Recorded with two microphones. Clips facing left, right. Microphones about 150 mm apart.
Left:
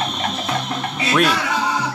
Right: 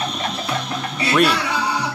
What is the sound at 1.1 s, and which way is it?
Speech, centre (ahead or behind).